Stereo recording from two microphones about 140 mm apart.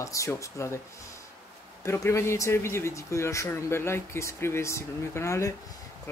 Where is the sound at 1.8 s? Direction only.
20° left (ahead or behind).